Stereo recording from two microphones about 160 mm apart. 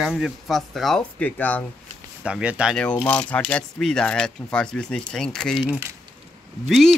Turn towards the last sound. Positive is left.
turn(degrees=0)  # may be behind; listen again after turning